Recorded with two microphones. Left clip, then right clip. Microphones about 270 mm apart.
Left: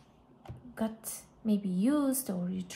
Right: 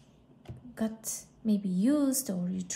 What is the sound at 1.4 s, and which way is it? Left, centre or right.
A woman's voice, centre.